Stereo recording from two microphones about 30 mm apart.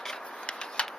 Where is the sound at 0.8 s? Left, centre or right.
Left.